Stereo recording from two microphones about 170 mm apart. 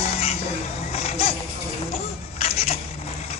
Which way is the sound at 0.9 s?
35° left (ahead or behind).